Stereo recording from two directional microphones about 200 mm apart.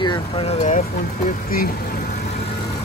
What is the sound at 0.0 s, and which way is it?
Speech, 25° left (ahead or behind).